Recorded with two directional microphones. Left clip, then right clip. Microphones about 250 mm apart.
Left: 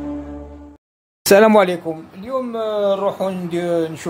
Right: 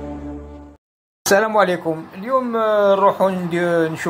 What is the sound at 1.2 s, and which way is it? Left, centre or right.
Speech, left.